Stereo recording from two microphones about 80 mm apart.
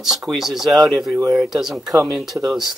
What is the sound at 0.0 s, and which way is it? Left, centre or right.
Speech, centre.